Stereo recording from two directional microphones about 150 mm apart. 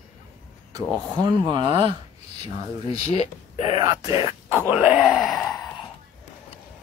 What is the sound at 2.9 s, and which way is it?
Speech, 45° left (ahead or behind).